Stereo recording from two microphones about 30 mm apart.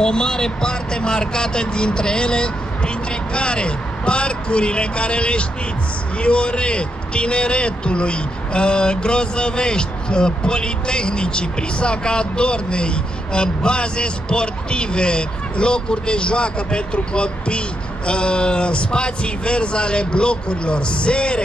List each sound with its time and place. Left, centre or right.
0.0 s a man's voice: left